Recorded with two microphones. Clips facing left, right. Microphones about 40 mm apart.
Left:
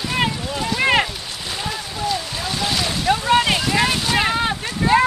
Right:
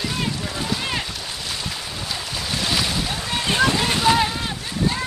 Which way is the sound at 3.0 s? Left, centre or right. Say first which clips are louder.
Left 9 dB; left.